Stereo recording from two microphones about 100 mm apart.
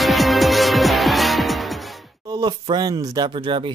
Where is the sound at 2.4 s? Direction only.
45° right (ahead or behind).